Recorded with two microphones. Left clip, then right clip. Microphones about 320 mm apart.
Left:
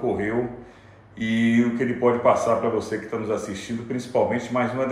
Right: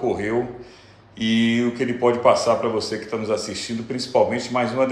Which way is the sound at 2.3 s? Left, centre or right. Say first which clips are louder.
Right 2 dB; right.